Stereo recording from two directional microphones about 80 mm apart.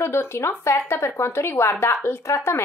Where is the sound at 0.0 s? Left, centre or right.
Left.